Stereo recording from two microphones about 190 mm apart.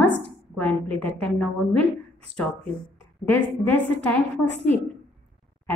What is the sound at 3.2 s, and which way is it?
A woman's voice, 10° left (ahead or behind).